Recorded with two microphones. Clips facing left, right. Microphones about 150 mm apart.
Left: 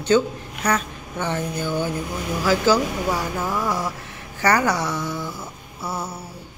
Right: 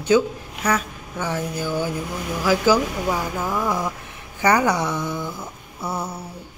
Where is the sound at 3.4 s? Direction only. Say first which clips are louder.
Even; 5° left (ahead or behind).